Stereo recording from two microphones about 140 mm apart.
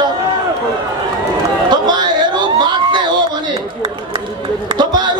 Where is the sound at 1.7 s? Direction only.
30° right (ahead or behind).